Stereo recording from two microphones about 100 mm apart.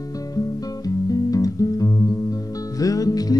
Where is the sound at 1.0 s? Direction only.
35° left (ahead or behind).